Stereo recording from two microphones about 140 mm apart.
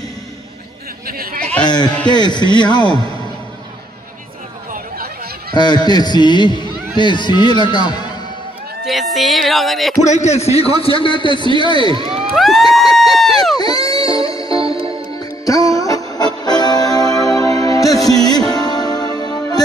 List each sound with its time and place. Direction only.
1.0 s speech: 90° right
1.4 s a sound: 10° left (ahead or behind)
2.0 s a man's voice: 30° left (ahead or behind)
5.5 s a man's voice: 30° left (ahead or behind)
8.8 s music: centre (ahead or behind)
10.0 s a man's voice: 55° left (ahead or behind); by 11.5 s 35° left (ahead or behind)
11.8 s speech: 40° right (ahead or behind)
12.4 s music: centre (ahead or behind)
12.9 s run: centre (ahead or behind)
13.6 s music: 30° left (ahead or behind)
14.5 s music: 40° right (ahead or behind)
15.4 s music: 25° left (ahead or behind)